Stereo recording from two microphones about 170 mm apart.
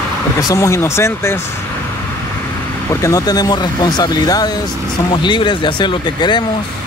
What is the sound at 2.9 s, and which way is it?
Speech, 20° left (ahead or behind).